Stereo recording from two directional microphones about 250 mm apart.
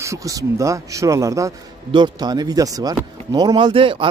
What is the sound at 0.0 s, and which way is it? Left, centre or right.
A man's voice, centre.